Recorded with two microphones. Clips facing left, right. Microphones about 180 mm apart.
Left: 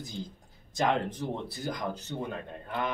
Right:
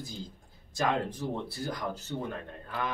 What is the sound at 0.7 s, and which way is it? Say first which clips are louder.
Speech: left 2 dB; 20° left (ahead or behind).